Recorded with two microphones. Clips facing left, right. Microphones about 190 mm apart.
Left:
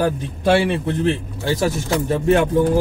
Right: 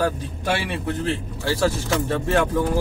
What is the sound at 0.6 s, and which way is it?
Speech, 20° left (ahead or behind).